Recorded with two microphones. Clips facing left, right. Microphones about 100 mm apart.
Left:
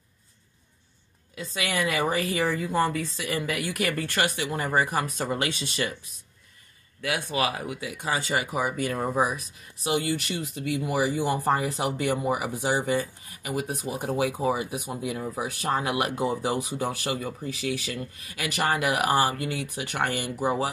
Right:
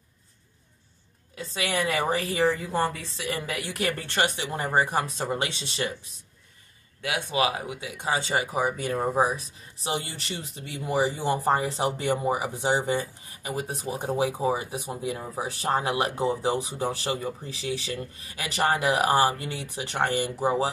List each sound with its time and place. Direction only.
1.3 s speech: 35° right (ahead or behind)
7.0 s speech: 20° right (ahead or behind)